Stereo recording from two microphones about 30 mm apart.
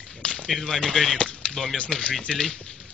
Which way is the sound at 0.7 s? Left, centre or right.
Centre.